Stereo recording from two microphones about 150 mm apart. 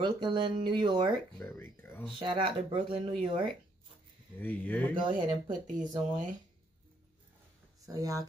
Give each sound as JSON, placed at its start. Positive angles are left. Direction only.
{"t": 0.0, "sound": "speech", "side_deg": -30}
{"t": 1.4, "sound": "speech", "side_deg": 15}
{"t": 2.1, "sound": "speech", "side_deg": -35}
{"t": 4.4, "sound": "speech", "side_deg": 10}
{"t": 5.7, "sound": "speech", "side_deg": -55}
{"t": 7.8, "sound": "speech", "side_deg": -25}